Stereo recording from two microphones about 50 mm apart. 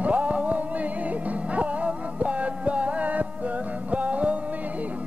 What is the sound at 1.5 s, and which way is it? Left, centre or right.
Music, right.